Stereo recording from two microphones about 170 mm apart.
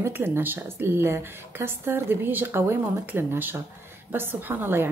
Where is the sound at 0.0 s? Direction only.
15° right (ahead or behind).